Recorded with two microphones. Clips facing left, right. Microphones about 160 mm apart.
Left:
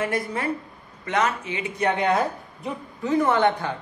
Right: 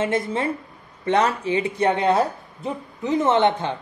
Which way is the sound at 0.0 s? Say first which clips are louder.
Right 3 dB; 25° right (ahead or behind).